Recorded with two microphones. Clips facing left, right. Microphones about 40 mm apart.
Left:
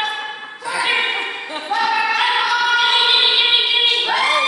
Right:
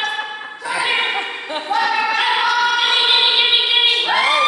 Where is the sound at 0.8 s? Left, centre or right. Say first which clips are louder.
Left 1 dB; centre.